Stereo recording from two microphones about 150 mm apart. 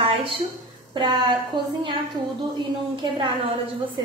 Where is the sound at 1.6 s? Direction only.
30° right (ahead or behind).